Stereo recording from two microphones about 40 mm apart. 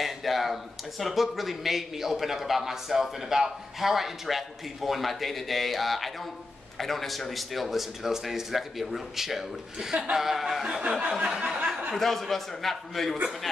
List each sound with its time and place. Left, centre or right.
0.0 s a man's voice: centre
11.2 s a sound: centre
11.9 s a man's voice: centre